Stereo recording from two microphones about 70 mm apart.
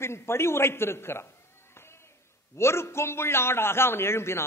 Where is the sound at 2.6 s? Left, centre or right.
Left.